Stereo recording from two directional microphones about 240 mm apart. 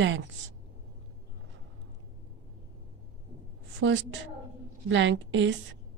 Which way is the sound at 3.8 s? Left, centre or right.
Right.